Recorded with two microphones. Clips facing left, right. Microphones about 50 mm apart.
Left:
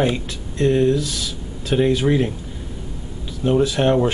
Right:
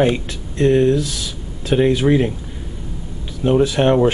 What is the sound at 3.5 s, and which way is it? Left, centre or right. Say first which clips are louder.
Speech: right 2 dB; centre.